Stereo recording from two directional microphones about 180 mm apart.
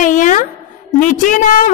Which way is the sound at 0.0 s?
45° left (ahead or behind).